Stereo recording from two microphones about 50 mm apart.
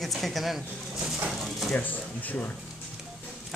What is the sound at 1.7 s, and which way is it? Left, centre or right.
Speech, left.